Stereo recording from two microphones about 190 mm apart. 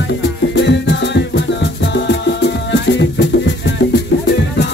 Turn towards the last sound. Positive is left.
turn(degrees=70)  # may be behind; listen again after turning